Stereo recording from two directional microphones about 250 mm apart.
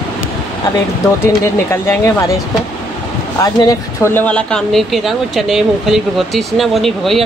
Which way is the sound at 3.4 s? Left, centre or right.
Centre.